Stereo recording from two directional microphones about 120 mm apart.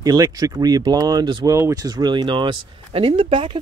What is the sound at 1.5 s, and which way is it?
Speech, 25° right (ahead or behind).